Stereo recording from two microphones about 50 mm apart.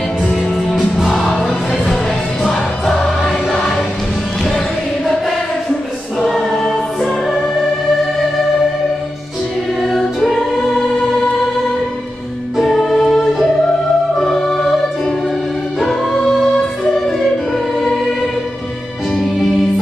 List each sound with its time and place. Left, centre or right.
0.2 s music: centre
6.2 s choir: centre
9.8 s choir: centre
12.5 s music: centre
15.8 s music: centre
16.5 s music: centre
19.1 s music: centre